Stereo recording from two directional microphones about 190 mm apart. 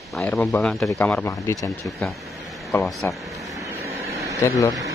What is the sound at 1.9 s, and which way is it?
Speech, centre (ahead or behind).